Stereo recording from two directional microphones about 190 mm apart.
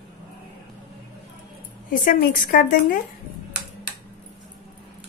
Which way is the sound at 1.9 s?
45° left (ahead or behind).